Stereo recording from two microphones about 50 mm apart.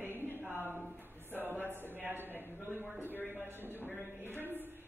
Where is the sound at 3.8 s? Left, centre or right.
Right.